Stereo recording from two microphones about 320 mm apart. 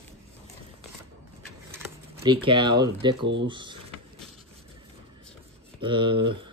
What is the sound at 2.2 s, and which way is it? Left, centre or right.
Speech, centre.